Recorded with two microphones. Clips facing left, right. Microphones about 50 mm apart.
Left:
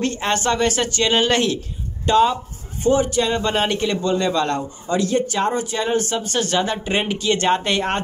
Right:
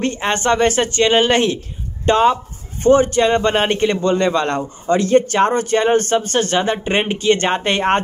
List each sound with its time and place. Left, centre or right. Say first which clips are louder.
0.0 s a man's voice: right 2 dB; right